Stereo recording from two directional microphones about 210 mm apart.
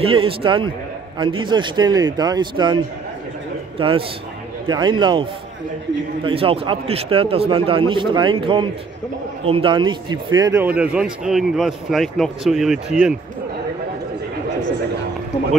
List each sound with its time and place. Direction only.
0.0 s a man's voice: 25° right (ahead or behind); by 13.2 s 5° right (ahead or behind)